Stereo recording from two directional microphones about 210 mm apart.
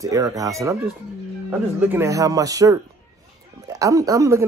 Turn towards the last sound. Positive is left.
turn(degrees=-15)  # may be behind; listen again after turning